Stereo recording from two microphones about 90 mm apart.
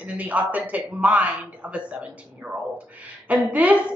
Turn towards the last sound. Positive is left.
turn(degrees=-15)  # may be behind; listen again after turning